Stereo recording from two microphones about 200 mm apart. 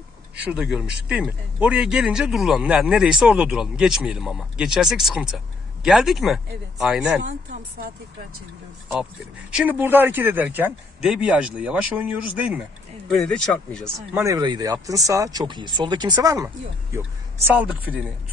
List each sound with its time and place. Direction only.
0.5 s a man's voice: 5° right (ahead or behind)
9.5 s speech: 5° right (ahead or behind)
13.1 s a man's voice: 5° left (ahead or behind)
13.9 s speech: 15° right (ahead or behind)